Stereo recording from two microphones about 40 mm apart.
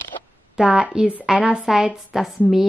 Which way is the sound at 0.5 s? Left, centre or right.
Centre.